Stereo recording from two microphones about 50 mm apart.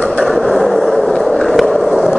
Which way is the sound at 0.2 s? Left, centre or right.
Centre.